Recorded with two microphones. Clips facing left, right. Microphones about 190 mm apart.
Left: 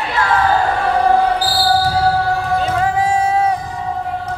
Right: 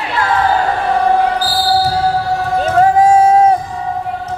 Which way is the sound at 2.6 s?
40° right (ahead or behind).